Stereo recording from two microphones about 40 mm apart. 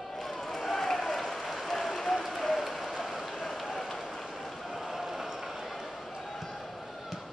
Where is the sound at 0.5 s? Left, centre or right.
Centre.